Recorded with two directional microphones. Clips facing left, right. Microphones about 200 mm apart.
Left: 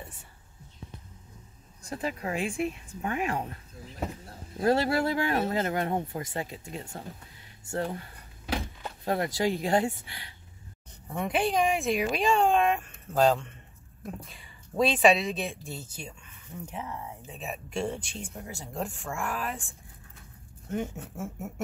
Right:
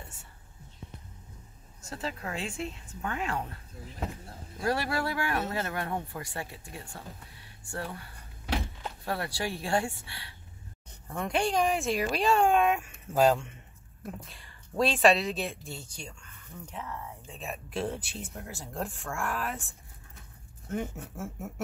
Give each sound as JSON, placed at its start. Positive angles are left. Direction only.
{"t": 1.8, "sound": "speech", "side_deg": 15}
{"t": 4.6, "sound": "speech", "side_deg": 25}
{"t": 11.1, "sound": "speech", "side_deg": 5}
{"t": 17.3, "sound": "speech", "side_deg": 0}
{"t": 20.6, "sound": "speech", "side_deg": 0}